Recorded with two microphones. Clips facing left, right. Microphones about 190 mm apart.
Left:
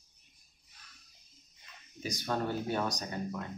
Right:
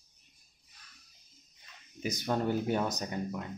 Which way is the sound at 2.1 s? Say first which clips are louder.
Right 3 dB; 15° right (ahead or behind).